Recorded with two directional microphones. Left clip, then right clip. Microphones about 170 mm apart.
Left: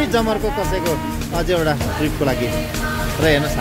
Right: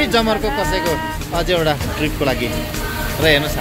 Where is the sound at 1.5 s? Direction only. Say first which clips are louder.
Right 1 dB; 20° left (ahead or behind).